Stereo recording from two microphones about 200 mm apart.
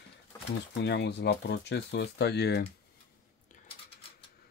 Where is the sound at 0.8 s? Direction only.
60° left (ahead or behind).